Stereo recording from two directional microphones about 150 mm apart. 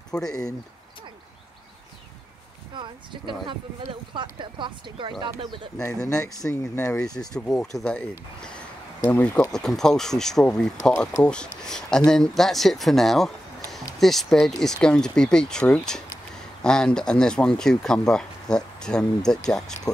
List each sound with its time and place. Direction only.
0.1 s speech: 5° left (ahead or behind)
2.7 s speech: 30° right (ahead or behind)
5.8 s speech: 20° left (ahead or behind); by 19.4 s 5° left (ahead or behind)